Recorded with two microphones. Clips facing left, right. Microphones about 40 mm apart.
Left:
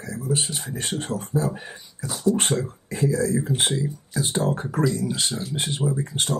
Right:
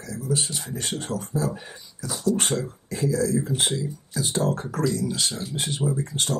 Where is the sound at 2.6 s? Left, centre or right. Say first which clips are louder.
Left 2 dB; left.